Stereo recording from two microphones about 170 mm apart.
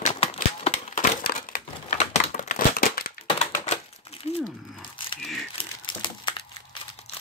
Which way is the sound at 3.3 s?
45° left (ahead or behind).